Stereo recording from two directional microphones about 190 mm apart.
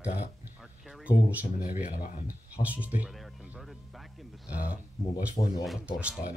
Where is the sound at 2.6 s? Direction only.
10° right (ahead or behind).